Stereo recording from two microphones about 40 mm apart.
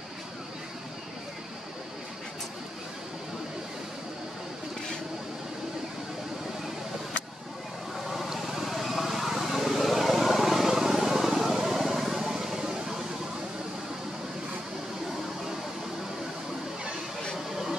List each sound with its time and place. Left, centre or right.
8.4 s vehicle: centre